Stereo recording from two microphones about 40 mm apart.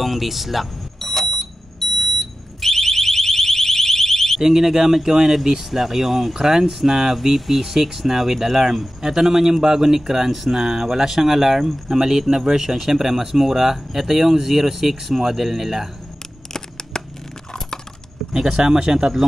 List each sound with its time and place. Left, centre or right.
0.0 s speech: centre
1.1 s fire alarm: centre
4.4 s speech: centre
16.5 s camera: centre
18.3 s speech: centre